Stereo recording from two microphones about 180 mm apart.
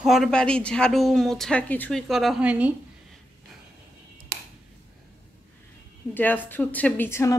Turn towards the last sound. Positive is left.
turn(degrees=15)  # may be behind; listen again after turning